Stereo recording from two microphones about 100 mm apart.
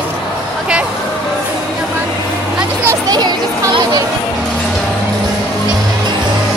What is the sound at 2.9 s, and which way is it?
Children playing, 40° right (ahead or behind).